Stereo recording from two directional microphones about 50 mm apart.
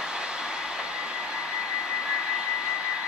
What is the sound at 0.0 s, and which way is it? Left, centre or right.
Vehicle, centre.